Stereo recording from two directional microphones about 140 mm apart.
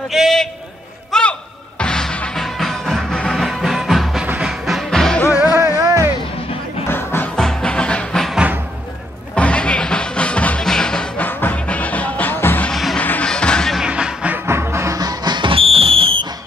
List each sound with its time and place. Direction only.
0.1 s a sound: centre (ahead or behind)
1.1 s music: 5° left (ahead or behind)
5.2 s music: 25° left (ahead or behind)
5.8 s music: 25° right (ahead or behind)
6.9 s music: 15° left (ahead or behind)
7.3 s music: 5° left (ahead or behind)
12.7 s music: centre (ahead or behind); by 16.3 s 40° right (ahead or behind)